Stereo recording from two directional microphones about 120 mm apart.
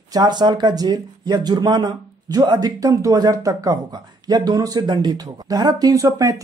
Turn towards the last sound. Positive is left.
turn(degrees=-30)  # may be behind; listen again after turning